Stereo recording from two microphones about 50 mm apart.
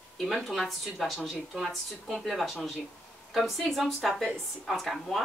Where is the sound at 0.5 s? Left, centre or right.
Centre.